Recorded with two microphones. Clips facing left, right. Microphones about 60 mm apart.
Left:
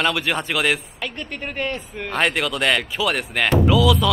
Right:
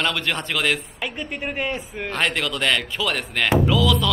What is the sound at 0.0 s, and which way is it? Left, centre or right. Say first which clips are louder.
Speech: left 3 dB; centre.